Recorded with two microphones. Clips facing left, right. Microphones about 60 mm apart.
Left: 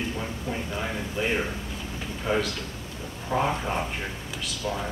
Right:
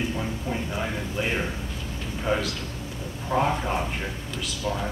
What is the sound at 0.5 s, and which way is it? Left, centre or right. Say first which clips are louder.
A man's voice: even; centre.